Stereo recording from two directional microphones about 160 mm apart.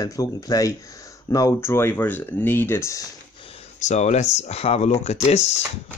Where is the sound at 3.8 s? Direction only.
45° left (ahead or behind).